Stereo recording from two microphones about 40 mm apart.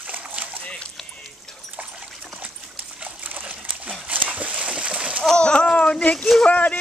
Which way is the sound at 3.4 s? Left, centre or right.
Right.